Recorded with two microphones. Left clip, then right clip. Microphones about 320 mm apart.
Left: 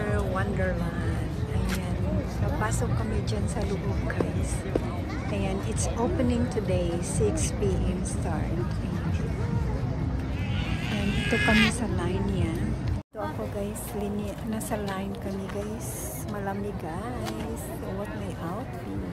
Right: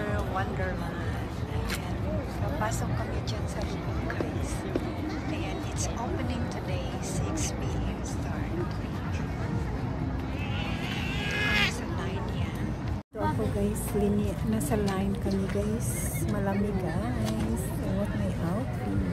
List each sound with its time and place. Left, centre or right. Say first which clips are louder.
0.0 s music: left 2 dB; centre
5.9 s speech: left 9 dB; centre
11.1 s speech: left 4 dB; left
14.5 s speech: right 2 dB; centre